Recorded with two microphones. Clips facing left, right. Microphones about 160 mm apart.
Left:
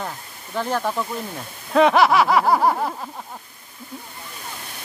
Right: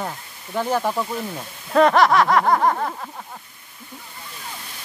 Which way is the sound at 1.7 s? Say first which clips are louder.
Even; centre (ahead or behind).